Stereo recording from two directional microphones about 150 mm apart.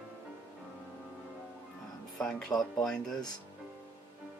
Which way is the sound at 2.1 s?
5° left (ahead or behind).